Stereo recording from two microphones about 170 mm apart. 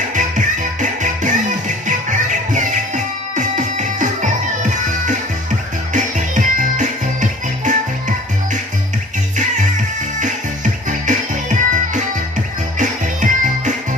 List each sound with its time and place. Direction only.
0.7 s music: 45° right (ahead or behind)
10.2 s music: 50° right (ahead or behind)